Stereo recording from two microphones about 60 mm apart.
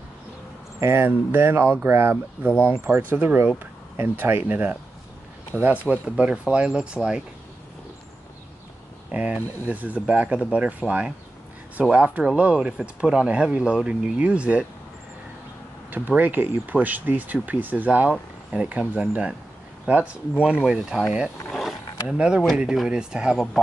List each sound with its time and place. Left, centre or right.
0.7 s speech: right; by 7.2 s centre
9.1 s speech: right
15.9 s speech: right; by 21.0 s centre
21.5 s roaring cats: centre
22.0 s speech: centre
23.3 s speech: centre